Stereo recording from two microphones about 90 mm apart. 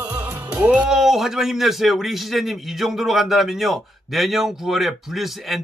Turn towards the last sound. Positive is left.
turn(degrees=0)  # may be behind; listen again after turning